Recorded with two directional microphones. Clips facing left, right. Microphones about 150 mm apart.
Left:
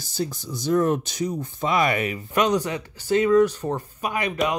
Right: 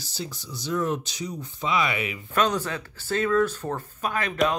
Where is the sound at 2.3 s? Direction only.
15° left (ahead or behind).